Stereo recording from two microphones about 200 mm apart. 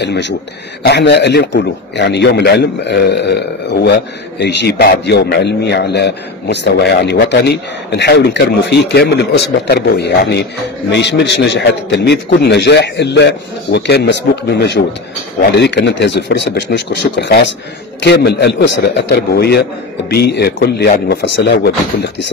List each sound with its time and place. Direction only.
0.0 s a man's voice: 60° left (ahead or behind)